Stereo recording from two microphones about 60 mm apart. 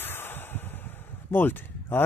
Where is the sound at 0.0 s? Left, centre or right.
Left.